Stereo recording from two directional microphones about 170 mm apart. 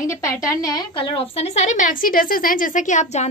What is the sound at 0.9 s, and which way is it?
A woman's voice, 30° left (ahead or behind).